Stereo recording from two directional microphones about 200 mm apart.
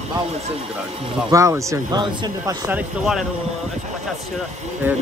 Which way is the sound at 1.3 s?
15° right (ahead or behind).